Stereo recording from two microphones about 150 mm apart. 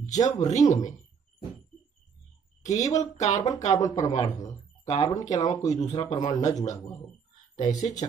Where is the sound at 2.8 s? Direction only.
25° left (ahead or behind).